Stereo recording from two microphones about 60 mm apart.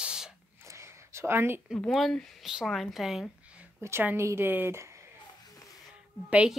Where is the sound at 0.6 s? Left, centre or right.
Right.